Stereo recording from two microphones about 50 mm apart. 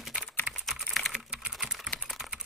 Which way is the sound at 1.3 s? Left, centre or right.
Centre.